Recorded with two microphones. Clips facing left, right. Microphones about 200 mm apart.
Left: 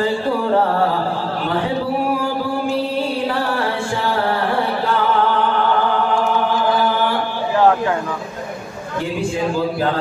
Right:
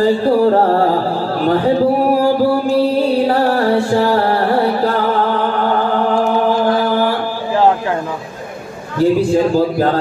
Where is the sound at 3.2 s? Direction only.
40° right (ahead or behind).